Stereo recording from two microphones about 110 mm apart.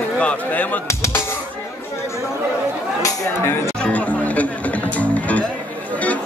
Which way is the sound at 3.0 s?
25° left (ahead or behind).